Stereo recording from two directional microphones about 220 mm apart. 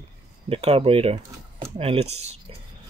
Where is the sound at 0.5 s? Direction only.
25° right (ahead or behind).